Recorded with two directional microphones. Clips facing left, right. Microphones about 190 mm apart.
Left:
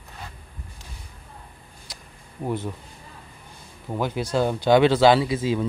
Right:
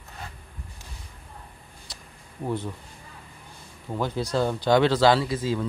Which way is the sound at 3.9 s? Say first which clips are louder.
Left 2 dB; 10° left (ahead or behind).